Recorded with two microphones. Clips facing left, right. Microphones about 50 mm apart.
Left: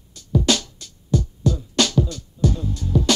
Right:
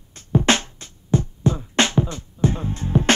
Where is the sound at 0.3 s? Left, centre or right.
Right.